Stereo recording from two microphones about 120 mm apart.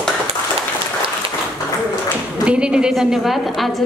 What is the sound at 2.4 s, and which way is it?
Speech, 10° right (ahead or behind).